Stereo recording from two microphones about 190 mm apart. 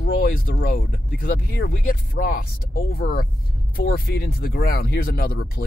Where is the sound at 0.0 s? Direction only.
50° left (ahead or behind).